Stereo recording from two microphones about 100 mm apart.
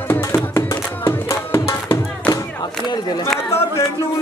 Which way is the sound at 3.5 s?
25° left (ahead or behind).